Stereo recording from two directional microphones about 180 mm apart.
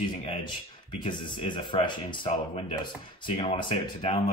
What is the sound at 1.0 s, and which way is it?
Speech, 25° left (ahead or behind).